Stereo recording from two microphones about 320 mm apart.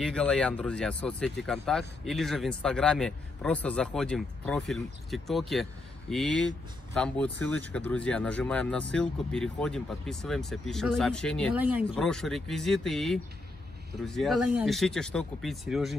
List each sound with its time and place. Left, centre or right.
0.0 s speech: centre